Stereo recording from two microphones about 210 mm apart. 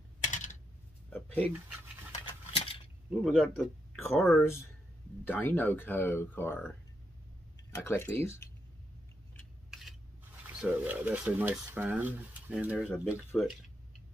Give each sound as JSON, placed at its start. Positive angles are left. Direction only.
{"t": 1.1, "sound": "speech", "side_deg": 5}
{"t": 2.2, "sound": "a sound", "side_deg": 25}
{"t": 3.1, "sound": "speech", "side_deg": 0}
{"t": 7.7, "sound": "speech", "side_deg": 10}
{"t": 9.4, "sound": "a sound", "side_deg": 0}
{"t": 10.4, "sound": "speech", "side_deg": -10}
{"t": 12.7, "sound": "speech", "side_deg": 10}